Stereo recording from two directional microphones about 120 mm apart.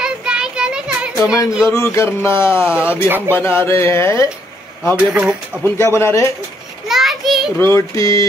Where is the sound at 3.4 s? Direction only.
20° left (ahead or behind).